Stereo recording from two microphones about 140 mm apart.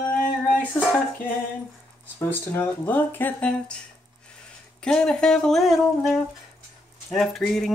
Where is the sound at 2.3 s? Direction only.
15° left (ahead or behind).